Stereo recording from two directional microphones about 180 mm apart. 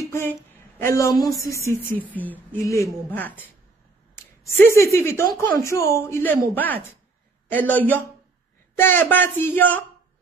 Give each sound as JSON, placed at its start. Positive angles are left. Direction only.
{"t": 0.1, "sound": "a sound", "side_deg": 15}
{"t": 2.5, "sound": "speech", "side_deg": 15}
{"t": 4.6, "sound": "speech", "side_deg": 15}